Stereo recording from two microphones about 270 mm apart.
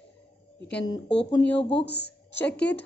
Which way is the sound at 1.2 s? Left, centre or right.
Centre.